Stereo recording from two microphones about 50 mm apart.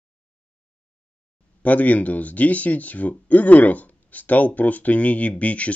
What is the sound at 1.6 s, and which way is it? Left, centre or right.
Speech, left.